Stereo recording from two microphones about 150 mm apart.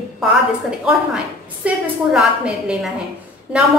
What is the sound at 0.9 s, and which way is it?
A woman's voice, 5° right (ahead or behind).